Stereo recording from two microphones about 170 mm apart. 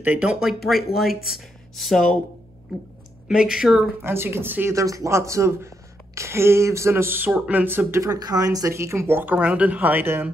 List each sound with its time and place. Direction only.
0.0 s speech: 5° right (ahead or behind)
3.3 s speech: 5° right (ahead or behind)
4.0 s speech: 15° right (ahead or behind)